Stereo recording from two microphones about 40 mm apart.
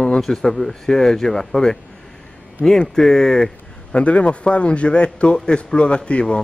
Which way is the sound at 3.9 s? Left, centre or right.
Left.